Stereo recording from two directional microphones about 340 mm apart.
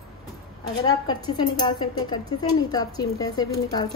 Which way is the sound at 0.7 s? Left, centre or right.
Centre.